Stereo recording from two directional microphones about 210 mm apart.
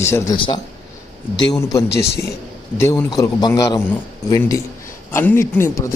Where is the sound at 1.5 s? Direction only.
15° left (ahead or behind).